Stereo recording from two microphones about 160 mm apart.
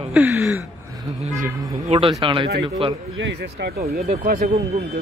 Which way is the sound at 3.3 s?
80° right.